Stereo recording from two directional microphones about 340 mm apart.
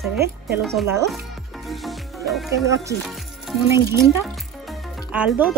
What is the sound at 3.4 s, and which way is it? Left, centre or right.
Speech, centre.